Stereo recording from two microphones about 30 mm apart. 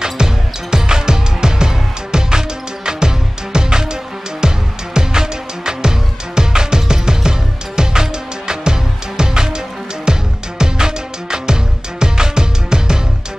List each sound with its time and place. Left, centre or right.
0.0 s music: right